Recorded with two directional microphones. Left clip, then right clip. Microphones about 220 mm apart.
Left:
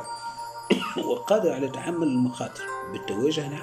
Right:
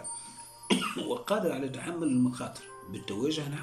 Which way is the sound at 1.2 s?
10° right (ahead or behind).